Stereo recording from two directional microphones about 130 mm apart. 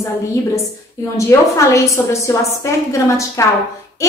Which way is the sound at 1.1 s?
25° left (ahead or behind).